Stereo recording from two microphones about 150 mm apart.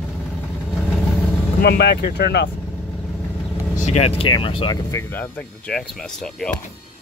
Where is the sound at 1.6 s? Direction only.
90° left.